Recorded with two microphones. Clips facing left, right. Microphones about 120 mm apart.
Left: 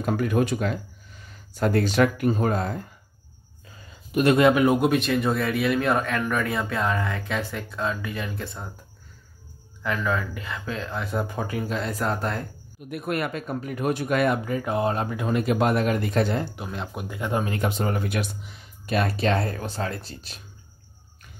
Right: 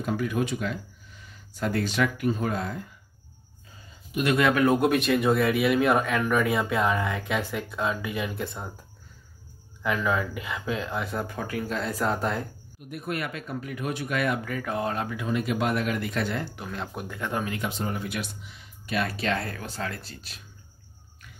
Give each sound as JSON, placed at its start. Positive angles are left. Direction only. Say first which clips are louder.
{"t": 0.0, "sound": "speech", "louder": "left 4 dB", "side_deg": 50}
{"t": 4.1, "sound": "speech", "louder": "left 5 dB", "side_deg": 40}
{"t": 4.4, "sound": "speech", "louder": "left 3 dB", "side_deg": 20}
{"t": 4.6, "sound": "speech", "louder": "left 1 dB", "side_deg": 0}
{"t": 9.8, "sound": "speech", "louder": "even", "side_deg": -10}
{"t": 11.2, "sound": "speech", "louder": "left 2 dB", "side_deg": 20}
{"t": 11.7, "sound": "speech", "louder": "right 1 dB", "side_deg": 0}
{"t": 12.9, "sound": "speech", "louder": "left 4 dB", "side_deg": 55}
{"t": 14.4, "sound": "speech", "louder": "left 4 dB", "side_deg": 25}
{"t": 15.1, "sound": "speech", "louder": "left 4 dB", "side_deg": 45}
{"t": 16.7, "sound": "speech", "louder": "even", "side_deg": 5}
{"t": 17.5, "sound": "speech", "louder": "left 5 dB", "side_deg": 50}